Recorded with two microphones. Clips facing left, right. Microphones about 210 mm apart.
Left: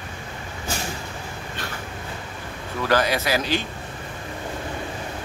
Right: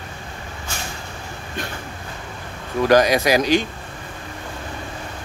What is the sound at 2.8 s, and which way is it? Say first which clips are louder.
Speech: right 6 dB; 15° right (ahead or behind).